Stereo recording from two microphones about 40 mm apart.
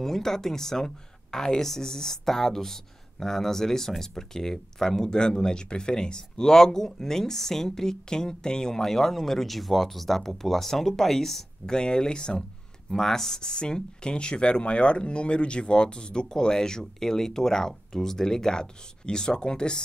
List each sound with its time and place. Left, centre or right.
0.0 s speech: centre